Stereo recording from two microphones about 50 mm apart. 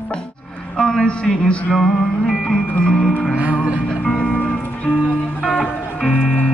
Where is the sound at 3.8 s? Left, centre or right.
Centre.